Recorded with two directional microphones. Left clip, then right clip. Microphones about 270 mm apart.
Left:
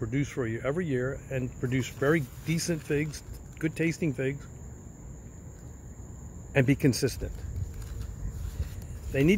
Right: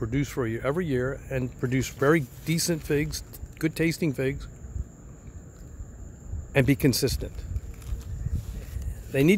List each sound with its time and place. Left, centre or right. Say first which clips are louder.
0.0 s speech: right 3 dB; centre
6.5 s speech: right 2 dB; centre
9.1 s speech: right 3 dB; centre